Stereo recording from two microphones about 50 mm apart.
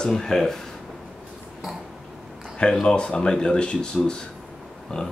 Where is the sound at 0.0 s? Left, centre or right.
Centre.